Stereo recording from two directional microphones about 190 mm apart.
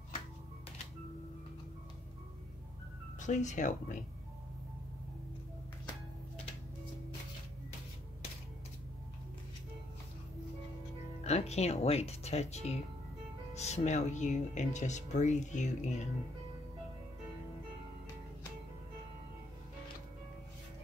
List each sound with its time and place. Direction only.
3.2 s speech: 40° left (ahead or behind)
11.2 s speech: 35° left (ahead or behind)